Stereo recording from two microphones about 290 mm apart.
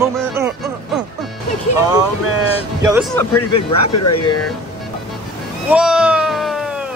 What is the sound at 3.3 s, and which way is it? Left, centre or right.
Speech, left.